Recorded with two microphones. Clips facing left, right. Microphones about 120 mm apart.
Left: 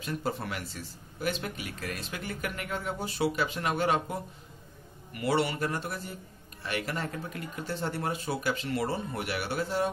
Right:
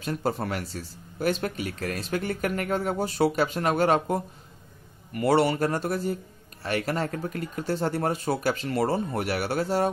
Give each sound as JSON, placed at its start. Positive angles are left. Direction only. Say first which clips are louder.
{"t": 0.0, "sound": "speech", "louder": "right 5 dB", "side_deg": -40}